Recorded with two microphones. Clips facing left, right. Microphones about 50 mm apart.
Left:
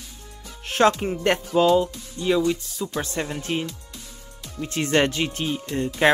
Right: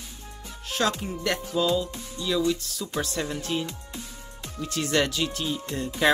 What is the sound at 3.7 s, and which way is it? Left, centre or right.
Music, right.